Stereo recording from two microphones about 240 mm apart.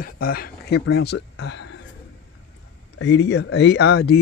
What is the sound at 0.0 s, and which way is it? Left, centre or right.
Speech, left.